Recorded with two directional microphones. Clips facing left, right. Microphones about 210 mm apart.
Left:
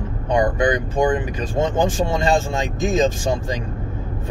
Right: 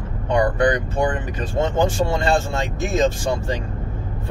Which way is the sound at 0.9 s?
15° left (ahead or behind).